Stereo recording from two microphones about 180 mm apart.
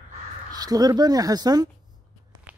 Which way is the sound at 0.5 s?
20° right (ahead or behind).